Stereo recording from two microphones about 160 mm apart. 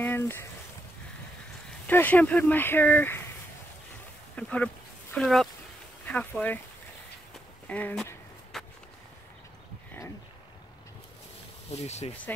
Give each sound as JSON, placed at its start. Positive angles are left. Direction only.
{"t": 0.0, "sound": "a sound", "side_deg": 15}
{"t": 1.9, "sound": "speech", "side_deg": 10}
{"t": 4.4, "sound": "speech", "side_deg": 10}
{"t": 7.3, "sound": "walk", "side_deg": 10}
{"t": 8.5, "sound": "skateboard", "side_deg": 0}
{"t": 11.8, "sound": "speech", "side_deg": 45}
{"t": 12.3, "sound": "speech", "side_deg": 10}